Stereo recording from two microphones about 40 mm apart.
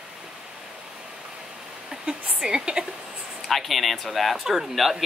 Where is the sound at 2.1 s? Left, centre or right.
Right.